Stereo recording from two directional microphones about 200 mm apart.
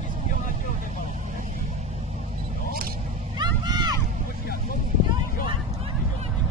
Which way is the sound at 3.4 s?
20° right (ahead or behind).